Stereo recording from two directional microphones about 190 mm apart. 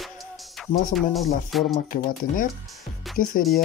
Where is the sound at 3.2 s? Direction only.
45° left (ahead or behind).